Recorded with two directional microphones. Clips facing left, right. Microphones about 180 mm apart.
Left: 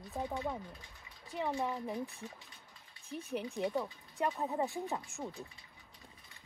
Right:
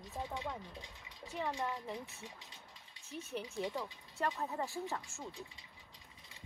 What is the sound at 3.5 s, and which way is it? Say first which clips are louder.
Speech: left 4 dB; 15° left (ahead or behind).